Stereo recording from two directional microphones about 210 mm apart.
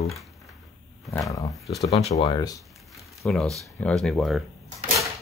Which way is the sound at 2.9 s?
Centre (ahead or behind).